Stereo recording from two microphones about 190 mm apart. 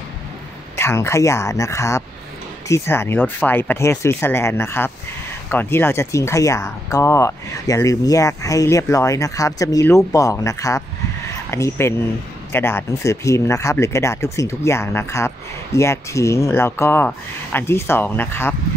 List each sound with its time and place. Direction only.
0.7 s speech: 15° left (ahead or behind)